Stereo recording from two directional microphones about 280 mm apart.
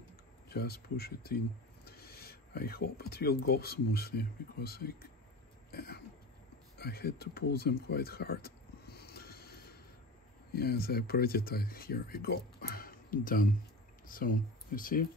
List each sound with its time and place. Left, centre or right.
0.5 s speech: left
5.7 s cough: left
6.8 s speech: left
7.5 s a sound: left
10.5 s speech: left